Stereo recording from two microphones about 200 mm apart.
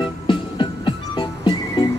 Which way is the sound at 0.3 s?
25° left (ahead or behind).